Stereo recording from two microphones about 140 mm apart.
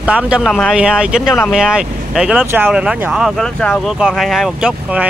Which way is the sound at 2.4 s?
15° right (ahead or behind).